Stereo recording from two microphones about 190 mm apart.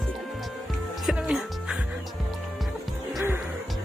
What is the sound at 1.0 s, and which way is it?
Music, 5° right (ahead or behind).